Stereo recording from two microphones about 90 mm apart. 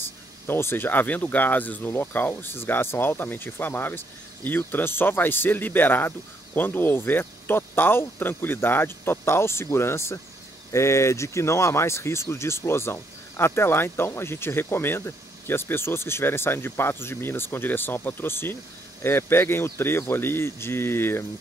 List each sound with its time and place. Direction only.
0.5 s speech: 25° left (ahead or behind)